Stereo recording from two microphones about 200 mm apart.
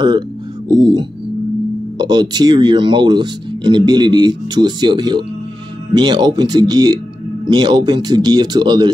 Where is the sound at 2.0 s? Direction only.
20° right (ahead or behind).